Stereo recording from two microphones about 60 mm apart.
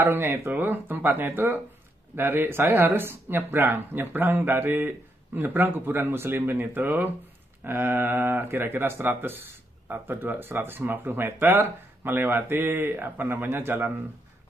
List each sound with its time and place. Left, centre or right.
0.0 s speech: right
0.5 s speech: right
2.6 s speech: right